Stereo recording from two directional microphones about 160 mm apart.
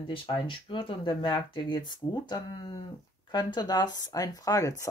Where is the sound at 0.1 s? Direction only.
30° left (ahead or behind).